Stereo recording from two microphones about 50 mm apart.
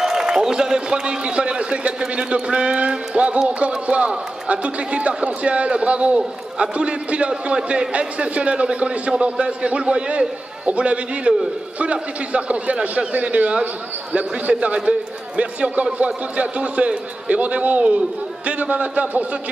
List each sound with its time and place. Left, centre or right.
0.0 s a man's voice: centre; by 19.2 s right